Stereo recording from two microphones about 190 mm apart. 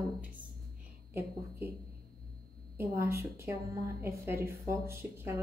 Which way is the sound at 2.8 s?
15° right (ahead or behind).